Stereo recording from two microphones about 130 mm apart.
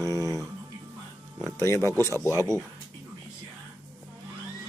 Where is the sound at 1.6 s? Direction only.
20° left (ahead or behind).